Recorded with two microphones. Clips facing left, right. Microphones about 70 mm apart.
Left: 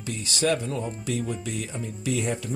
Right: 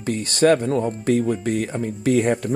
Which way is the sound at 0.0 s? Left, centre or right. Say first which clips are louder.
Right 9 dB; right.